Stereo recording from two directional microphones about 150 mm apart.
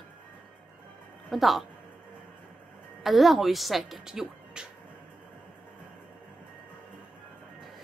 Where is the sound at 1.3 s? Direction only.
Centre (ahead or behind).